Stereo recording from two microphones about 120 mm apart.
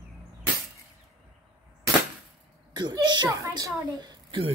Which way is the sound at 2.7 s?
35° right (ahead or behind).